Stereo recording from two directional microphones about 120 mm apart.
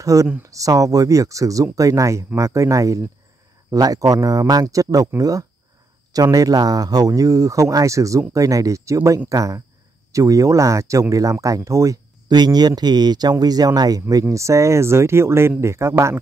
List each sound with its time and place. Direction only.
0.0 s speech: 25° right (ahead or behind)